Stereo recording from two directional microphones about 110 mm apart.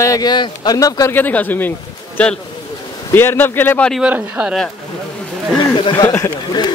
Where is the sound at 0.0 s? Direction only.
35° left (ahead or behind).